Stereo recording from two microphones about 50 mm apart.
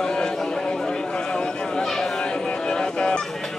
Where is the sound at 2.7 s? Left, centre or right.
Centre.